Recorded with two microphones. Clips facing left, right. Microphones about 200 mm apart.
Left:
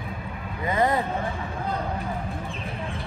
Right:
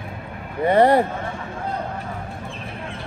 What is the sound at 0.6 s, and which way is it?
Vehicle, 30° right (ahead or behind).